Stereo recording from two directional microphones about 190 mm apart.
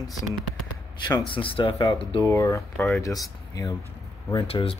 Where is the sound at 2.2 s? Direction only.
15° left (ahead or behind).